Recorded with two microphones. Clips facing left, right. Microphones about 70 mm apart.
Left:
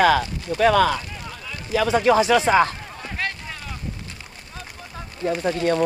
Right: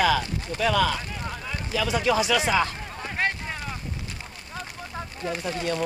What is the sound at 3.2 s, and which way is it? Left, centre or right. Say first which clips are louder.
Boat: right 2 dB; right.